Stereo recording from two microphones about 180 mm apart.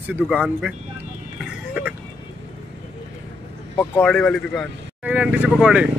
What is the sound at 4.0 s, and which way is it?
Speech, 5° left (ahead or behind).